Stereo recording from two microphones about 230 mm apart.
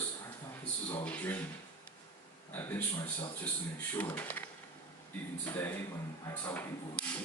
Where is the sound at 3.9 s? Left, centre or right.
Centre.